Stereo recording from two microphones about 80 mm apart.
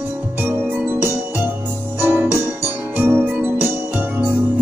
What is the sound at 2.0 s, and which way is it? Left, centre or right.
Music, right.